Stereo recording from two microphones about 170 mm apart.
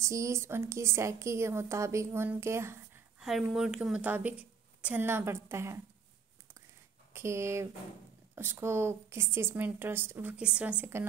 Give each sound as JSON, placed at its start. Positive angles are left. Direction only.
{"t": 0.0, "sound": "a woman's voice", "side_deg": -20}
{"t": 3.2, "sound": "a woman's voice", "side_deg": 0}
{"t": 7.2, "sound": "a woman's voice", "side_deg": -15}